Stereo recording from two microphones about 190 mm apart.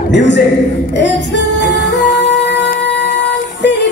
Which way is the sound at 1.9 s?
65° left (ahead or behind).